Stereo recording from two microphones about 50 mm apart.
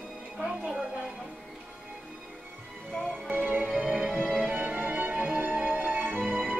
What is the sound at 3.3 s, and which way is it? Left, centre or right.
Music, right.